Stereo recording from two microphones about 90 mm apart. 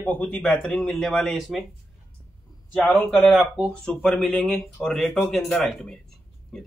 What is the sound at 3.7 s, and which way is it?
Speech, 5° left (ahead or behind).